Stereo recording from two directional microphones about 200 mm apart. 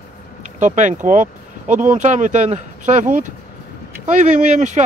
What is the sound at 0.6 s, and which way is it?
Speech, 40° right (ahead or behind).